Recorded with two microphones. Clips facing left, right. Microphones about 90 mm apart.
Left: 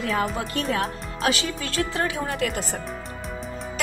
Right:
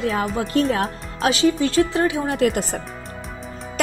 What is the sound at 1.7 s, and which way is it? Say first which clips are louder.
Speech: right 7 dB; 25° right (ahead or behind).